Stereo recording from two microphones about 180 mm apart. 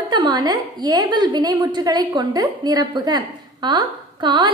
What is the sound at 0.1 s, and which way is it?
A woman's voice, 25° right (ahead or behind).